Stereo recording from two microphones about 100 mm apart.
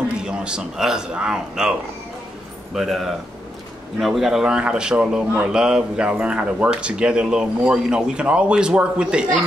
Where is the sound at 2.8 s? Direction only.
Centre (ahead or behind).